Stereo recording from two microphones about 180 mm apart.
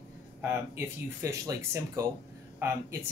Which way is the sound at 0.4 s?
10° right (ahead or behind).